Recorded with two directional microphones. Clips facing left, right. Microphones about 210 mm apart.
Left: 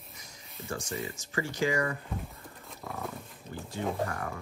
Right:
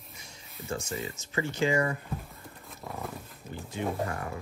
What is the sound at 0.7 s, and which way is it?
Speech, 25° right (ahead or behind).